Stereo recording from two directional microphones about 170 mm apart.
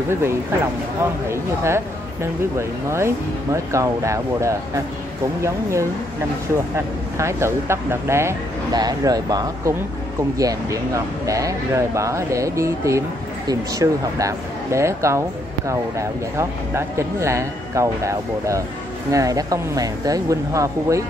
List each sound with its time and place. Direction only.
0.1 s speech: 15° right (ahead or behind)
2.9 s speech: 15° right (ahead or behind)
7.2 s speech: 15° right (ahead or behind)